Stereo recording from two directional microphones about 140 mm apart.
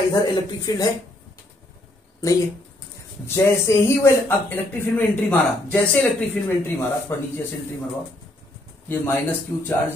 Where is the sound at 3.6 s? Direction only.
20° left (ahead or behind).